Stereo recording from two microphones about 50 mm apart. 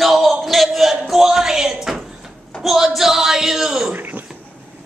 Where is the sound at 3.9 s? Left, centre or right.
Right.